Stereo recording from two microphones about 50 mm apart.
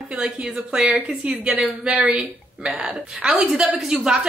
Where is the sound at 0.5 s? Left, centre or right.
Centre.